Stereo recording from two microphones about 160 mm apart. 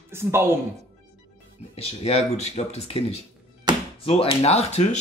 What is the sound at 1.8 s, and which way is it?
Speech, 40° left (ahead or behind).